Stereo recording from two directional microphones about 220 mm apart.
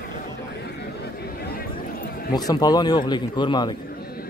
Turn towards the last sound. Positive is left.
turn(degrees=20)  # may be behind; listen again after turning